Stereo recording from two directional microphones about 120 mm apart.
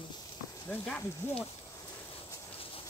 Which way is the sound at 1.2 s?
20° left (ahead or behind).